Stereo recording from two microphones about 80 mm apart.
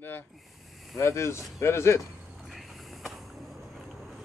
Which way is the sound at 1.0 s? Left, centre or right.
Left.